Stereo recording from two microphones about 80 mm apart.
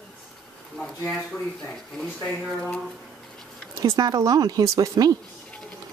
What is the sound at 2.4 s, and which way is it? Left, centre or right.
Speech, centre.